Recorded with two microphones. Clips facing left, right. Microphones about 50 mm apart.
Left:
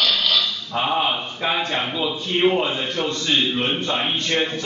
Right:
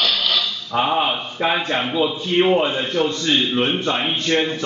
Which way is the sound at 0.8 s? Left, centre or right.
Centre.